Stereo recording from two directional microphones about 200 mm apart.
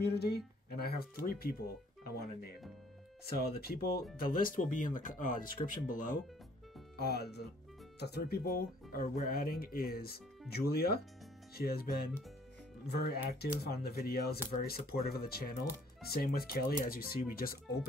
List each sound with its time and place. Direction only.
0.0 s speech: 55° left (ahead or behind)
3.3 s speech: 50° left (ahead or behind)
7.0 s speech: 50° left (ahead or behind)
12.8 s speech: 55° left (ahead or behind)